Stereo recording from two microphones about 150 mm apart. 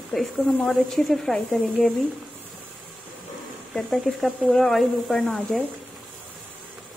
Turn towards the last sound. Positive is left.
turn(degrees=5)  # may be behind; listen again after turning